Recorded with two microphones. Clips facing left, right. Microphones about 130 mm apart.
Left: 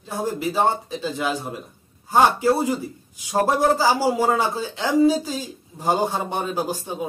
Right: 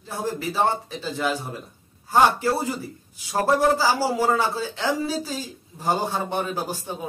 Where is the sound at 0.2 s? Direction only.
15° left (ahead or behind).